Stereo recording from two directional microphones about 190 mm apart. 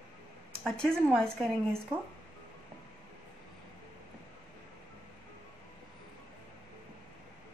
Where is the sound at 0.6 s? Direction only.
5° left (ahead or behind).